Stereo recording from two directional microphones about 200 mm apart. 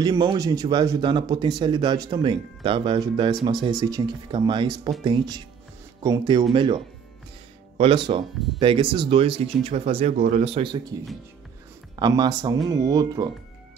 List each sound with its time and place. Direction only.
0.0 s speech: 20° right (ahead or behind)
12.0 s speech: 20° right (ahead or behind)